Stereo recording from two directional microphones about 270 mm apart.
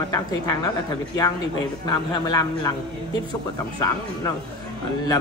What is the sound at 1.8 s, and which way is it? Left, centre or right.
Speech, centre.